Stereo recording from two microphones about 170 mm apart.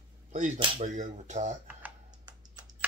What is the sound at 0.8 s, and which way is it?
Speech, 45° right (ahead or behind).